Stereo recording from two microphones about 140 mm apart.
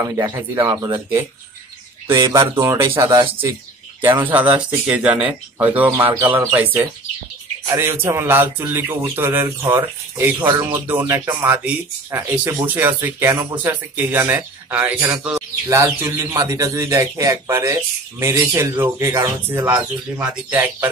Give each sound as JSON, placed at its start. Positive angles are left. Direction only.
{"t": 0.0, "sound": "speech", "side_deg": -25}
{"t": 2.5, "sound": "speech", "side_deg": -20}
{"t": 4.0, "sound": "speech", "side_deg": -15}